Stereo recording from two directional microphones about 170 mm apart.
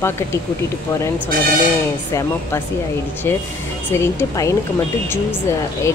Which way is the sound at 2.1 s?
15° left (ahead or behind).